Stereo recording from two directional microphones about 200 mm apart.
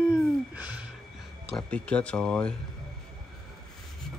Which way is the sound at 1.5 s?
5° left (ahead or behind).